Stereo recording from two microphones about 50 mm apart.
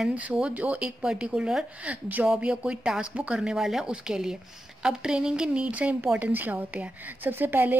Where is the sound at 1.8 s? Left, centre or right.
Right; by 3.1 s centre.